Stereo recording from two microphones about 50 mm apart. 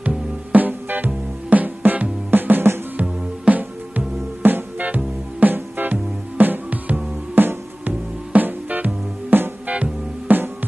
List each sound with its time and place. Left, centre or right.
0.5 s music: right